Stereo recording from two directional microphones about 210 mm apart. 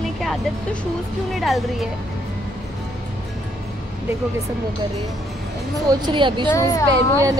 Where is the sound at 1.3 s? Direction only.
Centre (ahead or behind).